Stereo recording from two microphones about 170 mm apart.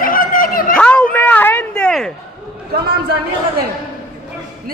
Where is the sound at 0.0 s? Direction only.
55° left (ahead or behind).